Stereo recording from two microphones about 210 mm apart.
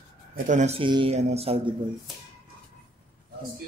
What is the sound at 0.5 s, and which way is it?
Speech, 35° right (ahead or behind).